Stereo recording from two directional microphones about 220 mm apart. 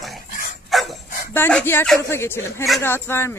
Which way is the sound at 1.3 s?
10° left (ahead or behind).